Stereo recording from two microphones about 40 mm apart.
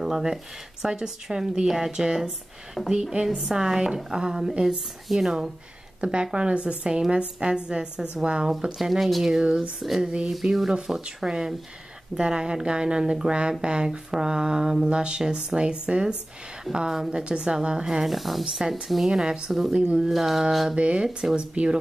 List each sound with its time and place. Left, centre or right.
0.0 s speech: centre
6.3 s speech: right
8.7 s speech: centre
10.4 s speech: centre; by 17.8 s right
18.0 s speech: centre
19.0 s speech: right
20.1 s speech: centre
20.7 s speech: right